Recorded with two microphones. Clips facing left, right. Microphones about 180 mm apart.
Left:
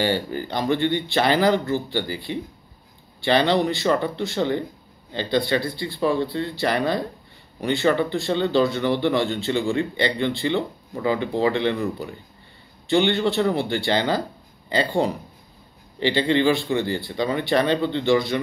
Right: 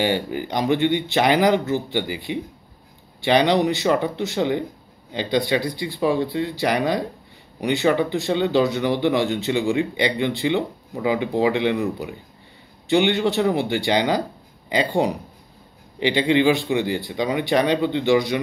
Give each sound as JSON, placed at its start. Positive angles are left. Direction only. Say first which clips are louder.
{"t": 0.0, "sound": "speech", "louder": "right 1 dB", "side_deg": -15}